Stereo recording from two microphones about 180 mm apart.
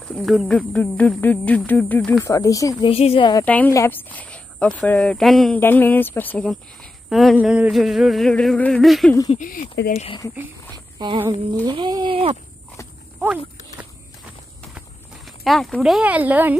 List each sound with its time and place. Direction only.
0.0 s speech: centre (ahead or behind)
2.2 s speech: 20° left (ahead or behind)
2.9 s speech: 30° left (ahead or behind)
3.4 s speech: 10° left (ahead or behind)
9.4 s speech: 50° left (ahead or behind)
9.9 s speech: 30° left (ahead or behind)
11.0 s a sound: 30° right (ahead or behind)
11.6 s speech: 25° right (ahead or behind)
15.2 s speech: centre (ahead or behind)